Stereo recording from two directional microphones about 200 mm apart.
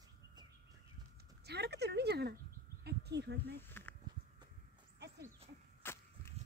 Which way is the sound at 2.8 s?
55° right (ahead or behind).